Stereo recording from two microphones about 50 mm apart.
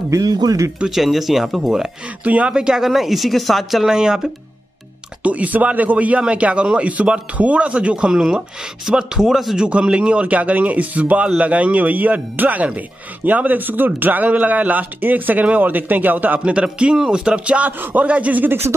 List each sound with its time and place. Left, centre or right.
0.8 s speech: centre
2.2 s speech: right
2.5 s speech: centre
2.9 s speech: centre
3.9 s speech: centre
5.2 s speech: right
8.1 s speech: centre
9.6 s speech: right
16.5 s speech: right
17.6 s speech: right